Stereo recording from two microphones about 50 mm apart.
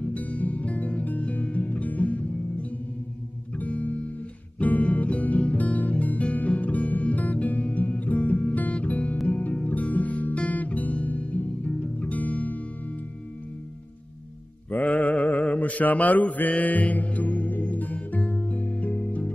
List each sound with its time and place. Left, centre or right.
0.0 s music: left
3.5 s music: left
9.3 s guitar: left
14.7 s mantra: left